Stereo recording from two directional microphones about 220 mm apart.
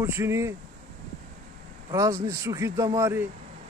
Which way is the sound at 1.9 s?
15° right (ahead or behind).